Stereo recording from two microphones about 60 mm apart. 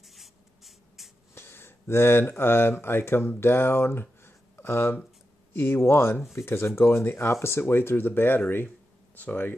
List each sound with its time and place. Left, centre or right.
0.0 s writing: centre
1.3 s speech: left